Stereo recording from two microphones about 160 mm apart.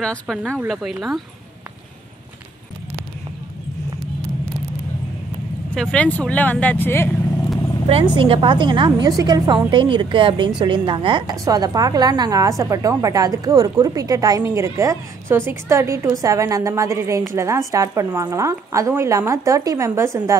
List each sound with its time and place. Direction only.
0.0 s speech: centre (ahead or behind)
5.8 s speech: 5° left (ahead or behind)
7.9 s a woman's voice: 30° right (ahead or behind)